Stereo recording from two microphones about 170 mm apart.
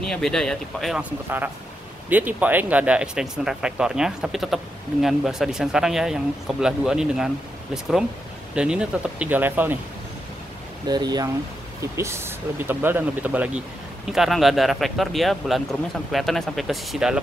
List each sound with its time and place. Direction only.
0.0 s speech: 5° left (ahead or behind)
2.0 s speech: 10° right (ahead or behind)
8.5 s speech: 5° right (ahead or behind)
10.9 s speech: 25° right (ahead or behind); by 17.2 s centre (ahead or behind)